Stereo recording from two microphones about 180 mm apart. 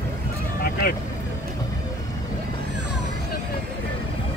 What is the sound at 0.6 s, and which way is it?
Vehicle, 55° left (ahead or behind).